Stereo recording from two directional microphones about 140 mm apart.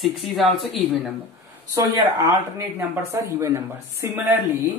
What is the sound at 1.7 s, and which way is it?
A woman's voice, 30° right (ahead or behind).